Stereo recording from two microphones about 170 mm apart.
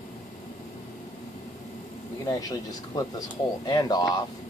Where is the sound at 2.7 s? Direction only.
20° left (ahead or behind).